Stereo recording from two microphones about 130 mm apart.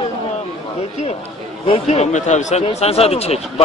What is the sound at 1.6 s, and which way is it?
Speech, 55° left (ahead or behind).